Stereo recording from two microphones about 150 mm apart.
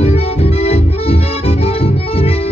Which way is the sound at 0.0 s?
45° left (ahead or behind).